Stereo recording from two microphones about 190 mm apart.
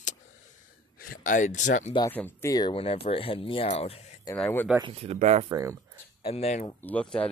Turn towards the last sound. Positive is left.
turn(degrees=5)  # may be behind; listen again after turning